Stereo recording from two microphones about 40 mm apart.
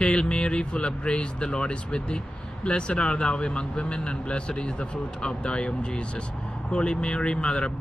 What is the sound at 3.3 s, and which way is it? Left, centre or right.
A man's voice, left.